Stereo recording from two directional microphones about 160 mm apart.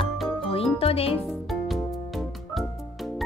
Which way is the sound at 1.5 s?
Centre (ahead or behind).